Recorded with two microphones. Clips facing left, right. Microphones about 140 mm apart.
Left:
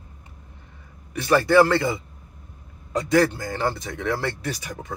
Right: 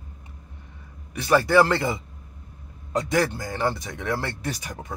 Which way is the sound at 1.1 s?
15° right (ahead or behind).